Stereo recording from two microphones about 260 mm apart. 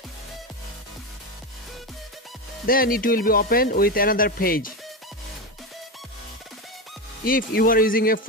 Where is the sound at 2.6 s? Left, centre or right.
Left.